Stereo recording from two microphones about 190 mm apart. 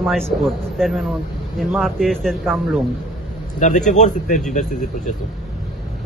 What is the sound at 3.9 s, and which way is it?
Speech, 40° left (ahead or behind).